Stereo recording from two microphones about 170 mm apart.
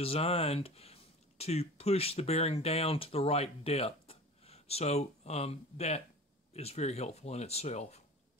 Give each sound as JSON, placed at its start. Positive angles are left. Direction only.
{"t": 0.0, "sound": "speech", "side_deg": 35}